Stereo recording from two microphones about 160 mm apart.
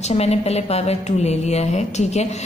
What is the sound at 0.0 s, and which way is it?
A woman's voice, 40° left (ahead or behind).